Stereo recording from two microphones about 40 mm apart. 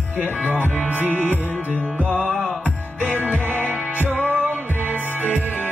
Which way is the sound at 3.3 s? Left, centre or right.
Right.